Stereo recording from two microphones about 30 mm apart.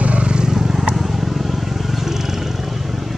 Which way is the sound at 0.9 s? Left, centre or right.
Centre.